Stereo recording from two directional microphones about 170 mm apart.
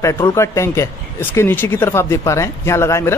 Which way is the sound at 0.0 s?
15° left (ahead or behind).